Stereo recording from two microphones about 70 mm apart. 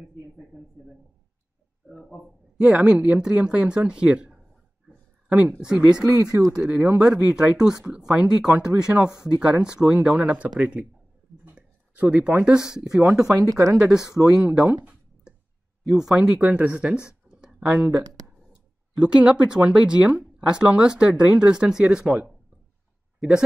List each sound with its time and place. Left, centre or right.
0.0 s a sound: centre
1.9 s speech: centre
4.8 s a sound: centre
5.6 s speech: centre
13.3 s speech: right
13.7 s speech: centre
15.8 s speech: centre
16.3 s speech: centre
17.1 s a sound: centre
18.5 s a man's voice: centre